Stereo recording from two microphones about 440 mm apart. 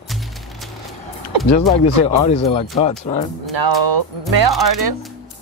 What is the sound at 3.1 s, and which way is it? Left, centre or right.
Speech, centre.